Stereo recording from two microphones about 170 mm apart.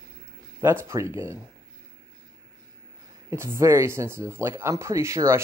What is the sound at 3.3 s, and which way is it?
Speech, 15° right (ahead or behind).